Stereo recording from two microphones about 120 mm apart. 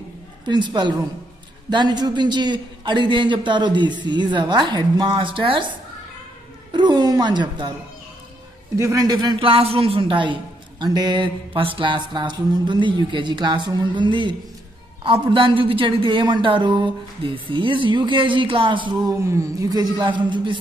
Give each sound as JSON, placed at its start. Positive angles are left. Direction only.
{"t": 0.5, "sound": "a man's voice", "side_deg": -40}
{"t": 6.7, "sound": "a sound", "side_deg": -40}
{"t": 8.7, "sound": "a man's voice", "side_deg": -25}
{"t": 19.2, "sound": "a man's voice", "side_deg": -25}